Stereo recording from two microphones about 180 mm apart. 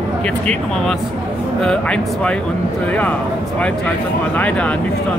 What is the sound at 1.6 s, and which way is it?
Speech, 5° left (ahead or behind).